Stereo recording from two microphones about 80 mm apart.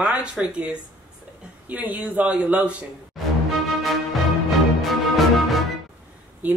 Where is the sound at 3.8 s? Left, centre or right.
Centre.